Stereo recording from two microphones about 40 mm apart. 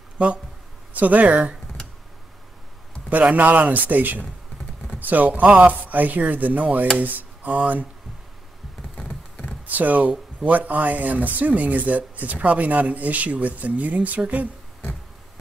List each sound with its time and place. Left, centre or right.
0.2 s speech: right
0.9 s speech: right
3.1 s speech: right
7.0 s a sound: right
9.8 s speech: right